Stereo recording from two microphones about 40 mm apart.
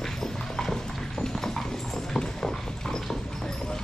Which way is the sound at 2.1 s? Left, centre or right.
Centre.